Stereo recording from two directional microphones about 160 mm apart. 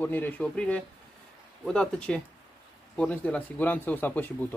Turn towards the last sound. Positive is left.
turn(degrees=10)  # may be behind; listen again after turning